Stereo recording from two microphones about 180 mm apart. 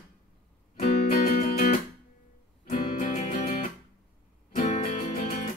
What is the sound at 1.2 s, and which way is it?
Music, 50° left (ahead or behind).